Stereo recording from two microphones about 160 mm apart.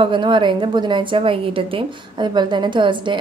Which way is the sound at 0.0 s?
30° right (ahead or behind).